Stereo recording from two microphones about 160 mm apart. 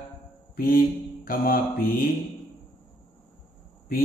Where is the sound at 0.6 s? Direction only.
65° left (ahead or behind).